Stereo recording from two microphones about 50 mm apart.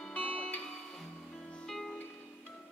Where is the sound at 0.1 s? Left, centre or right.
Left.